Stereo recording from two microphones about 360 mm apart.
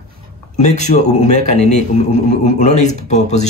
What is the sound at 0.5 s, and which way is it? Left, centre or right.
Speech, centre.